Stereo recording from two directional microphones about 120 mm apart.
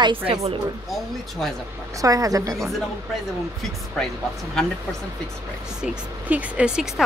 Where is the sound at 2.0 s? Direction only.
30° right (ahead or behind).